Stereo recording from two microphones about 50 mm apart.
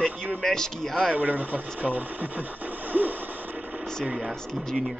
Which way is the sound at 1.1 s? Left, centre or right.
Right.